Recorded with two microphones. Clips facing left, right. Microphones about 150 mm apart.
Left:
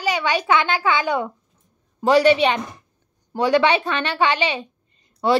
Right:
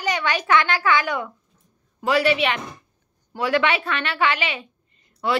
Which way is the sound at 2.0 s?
35° left (ahead or behind).